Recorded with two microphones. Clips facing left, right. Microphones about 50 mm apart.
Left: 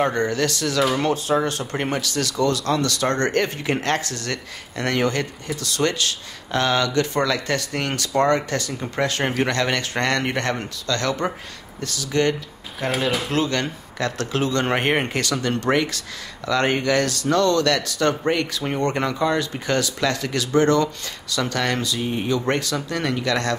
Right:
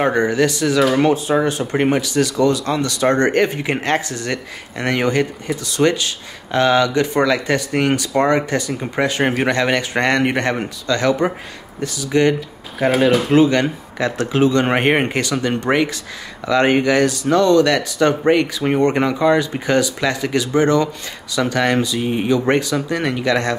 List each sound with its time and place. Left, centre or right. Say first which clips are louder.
0.0 s speech: right 5 dB; centre
12.7 s speech: right 8 dB; centre